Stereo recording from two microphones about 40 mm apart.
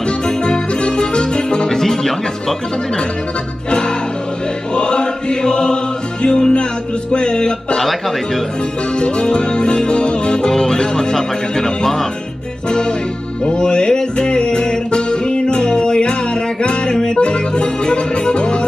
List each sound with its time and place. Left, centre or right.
0.4 s music: left
1.8 s music: centre
4.7 s chant: left
6.2 s music: left
8.9 s music: left